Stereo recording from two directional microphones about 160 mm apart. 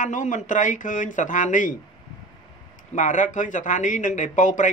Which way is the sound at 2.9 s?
50° left (ahead or behind).